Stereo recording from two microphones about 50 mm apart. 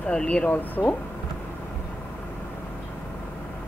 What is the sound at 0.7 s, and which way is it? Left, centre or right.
Speech, left.